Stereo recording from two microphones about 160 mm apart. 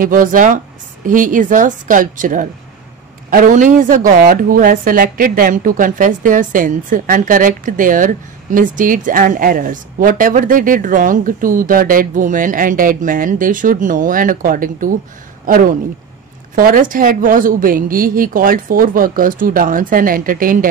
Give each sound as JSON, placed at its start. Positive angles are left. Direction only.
{"t": 0.0, "sound": "a woman's voice", "side_deg": -60}